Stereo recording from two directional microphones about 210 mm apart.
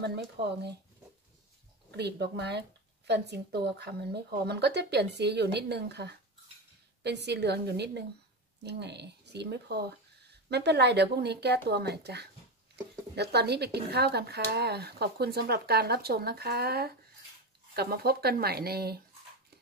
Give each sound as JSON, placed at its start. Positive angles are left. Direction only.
{"t": 0.0, "sound": "speech", "side_deg": -50}
{"t": 1.9, "sound": "speech", "side_deg": -50}